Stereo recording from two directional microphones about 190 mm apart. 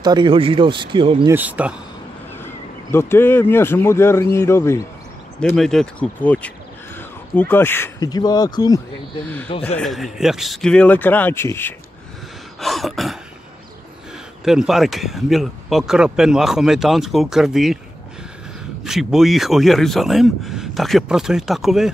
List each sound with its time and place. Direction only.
0.0 s speech: 25° right (ahead or behind)
1.3 s speech: 10° right (ahead or behind)
2.4 s speech: 10° left (ahead or behind)
5.4 s speech: 5° left (ahead or behind); by 8.8 s 20° left (ahead or behind)
9.8 s speech: centre (ahead or behind)
12.5 s throat clearing: centre (ahead or behind)
14.4 s speech: centre (ahead or behind)
18.9 s speech: centre (ahead or behind)